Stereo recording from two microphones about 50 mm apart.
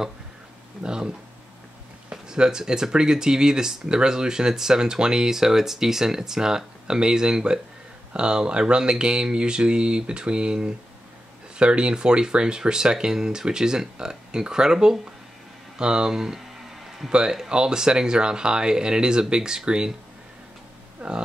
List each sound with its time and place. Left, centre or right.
0.8 s speech: centre
21.0 s speech: right